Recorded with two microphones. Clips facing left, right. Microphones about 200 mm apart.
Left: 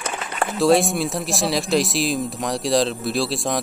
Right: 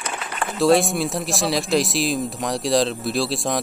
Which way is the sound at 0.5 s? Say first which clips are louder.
Even; centre (ahead or behind).